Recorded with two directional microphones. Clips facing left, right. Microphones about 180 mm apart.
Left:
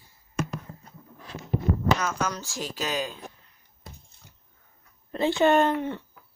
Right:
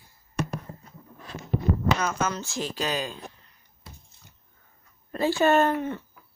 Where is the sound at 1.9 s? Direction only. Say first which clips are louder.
Right 1 dB; centre (ahead or behind).